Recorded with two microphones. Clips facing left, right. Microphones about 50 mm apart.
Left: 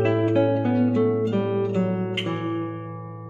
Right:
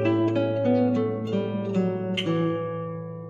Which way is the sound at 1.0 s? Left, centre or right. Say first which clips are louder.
Left 6 dB; centre.